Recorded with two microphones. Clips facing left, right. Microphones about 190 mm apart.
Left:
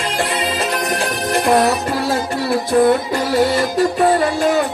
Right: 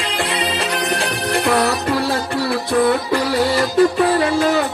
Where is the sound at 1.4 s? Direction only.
50° left (ahead or behind).